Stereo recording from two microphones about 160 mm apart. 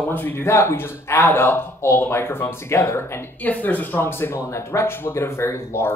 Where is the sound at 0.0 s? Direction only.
10° left (ahead or behind).